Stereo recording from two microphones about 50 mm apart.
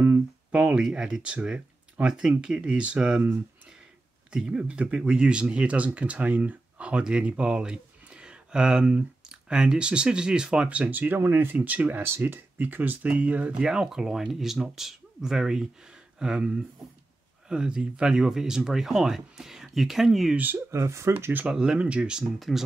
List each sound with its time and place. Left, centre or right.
0.5 s speech: right
4.5 s speech: right
11.1 s speech: right
11.5 s speech: right
12.0 s speech: right
13.0 s speech: right
13.7 s speech: centre
20.5 s speech: right
21.1 s speech: right
21.5 s speech: centre
22.4 s speech: centre